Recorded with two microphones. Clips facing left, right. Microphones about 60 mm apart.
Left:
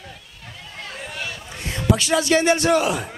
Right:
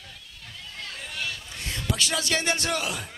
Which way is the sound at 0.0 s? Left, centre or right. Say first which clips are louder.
Left 5 dB; left.